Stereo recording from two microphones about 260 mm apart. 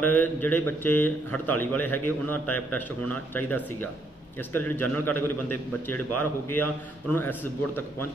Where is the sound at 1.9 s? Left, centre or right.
Left.